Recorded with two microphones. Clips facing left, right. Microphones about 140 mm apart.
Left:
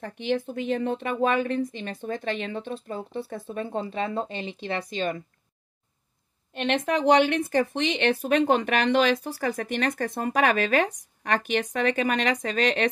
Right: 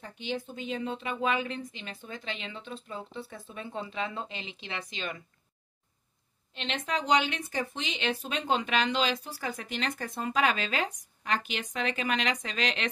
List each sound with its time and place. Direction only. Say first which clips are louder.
0.0 s speech: left 8 dB; 65° left (ahead or behind); by 5.2 s 40° left (ahead or behind)
6.5 s speech: left 8 dB; 55° left (ahead or behind)